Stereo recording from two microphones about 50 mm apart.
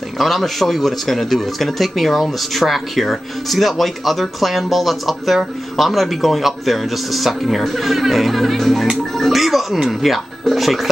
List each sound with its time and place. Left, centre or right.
0.2 s speech: centre